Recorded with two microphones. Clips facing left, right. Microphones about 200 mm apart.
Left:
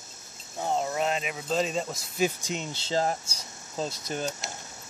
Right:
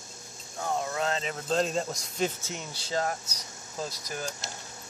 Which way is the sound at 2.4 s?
15° left (ahead or behind).